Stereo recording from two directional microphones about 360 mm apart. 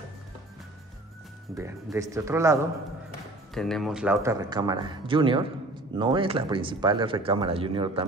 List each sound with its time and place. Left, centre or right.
1.6 s speech: centre